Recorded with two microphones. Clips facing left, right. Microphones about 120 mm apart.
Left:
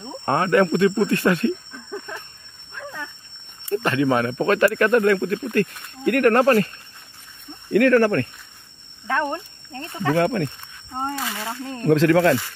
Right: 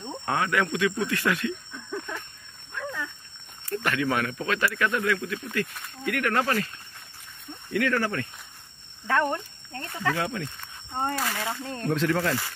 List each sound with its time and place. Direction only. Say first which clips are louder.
0.2 s speech: left 8 dB; 45° left (ahead or behind)
3.7 s speech: left 7 dB; 25° left (ahead or behind)
4.4 s speech: left 9 dB; 45° left (ahead or behind)
7.7 s speech: left 10 dB; 55° left (ahead or behind)
9.0 s speech: left 1 dB; 20° left (ahead or behind)
10.1 s speech: left 10 dB; 60° left (ahead or behind)
10.9 s speech: left 1 dB; 15° left (ahead or behind)
11.8 s speech: left 10 dB; 85° left